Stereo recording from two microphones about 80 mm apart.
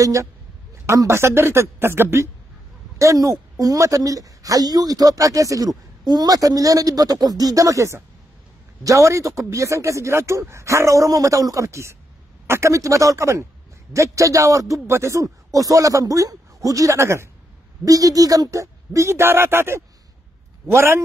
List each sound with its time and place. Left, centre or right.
0.0 s a woman's voice: right
3.0 s a woman's voice: right
17.8 s speech: right